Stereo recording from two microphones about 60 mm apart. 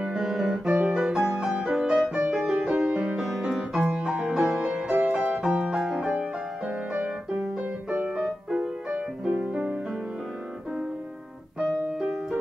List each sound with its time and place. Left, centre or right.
0.0 s music: centre
0.7 s music: right
0.9 s music: centre
3.2 s music: centre
8.2 s music: centre
11.6 s piano: centre